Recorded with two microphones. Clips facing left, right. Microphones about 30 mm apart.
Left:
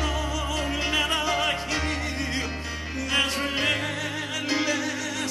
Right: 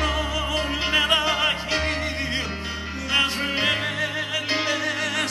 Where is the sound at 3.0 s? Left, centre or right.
Centre.